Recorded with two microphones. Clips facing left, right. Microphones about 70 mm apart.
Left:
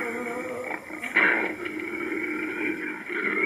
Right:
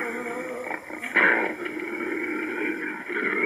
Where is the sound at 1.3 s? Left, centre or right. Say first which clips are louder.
Right 2 dB; centre.